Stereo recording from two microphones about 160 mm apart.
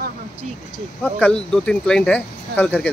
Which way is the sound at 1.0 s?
10° left (ahead or behind).